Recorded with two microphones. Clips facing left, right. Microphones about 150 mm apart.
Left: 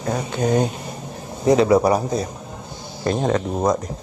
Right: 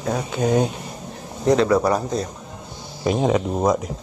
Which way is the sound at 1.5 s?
10° left (ahead or behind).